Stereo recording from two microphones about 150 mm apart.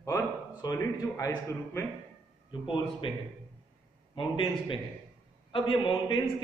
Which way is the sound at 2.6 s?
35° left (ahead or behind).